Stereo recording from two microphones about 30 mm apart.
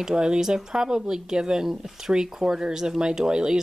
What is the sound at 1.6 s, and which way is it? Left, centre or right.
Speech, centre.